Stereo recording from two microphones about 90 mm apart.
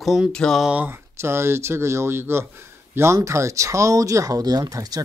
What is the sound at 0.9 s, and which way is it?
A man's voice, 30° right (ahead or behind).